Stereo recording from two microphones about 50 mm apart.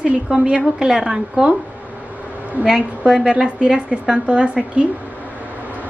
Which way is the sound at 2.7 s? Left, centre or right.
Centre.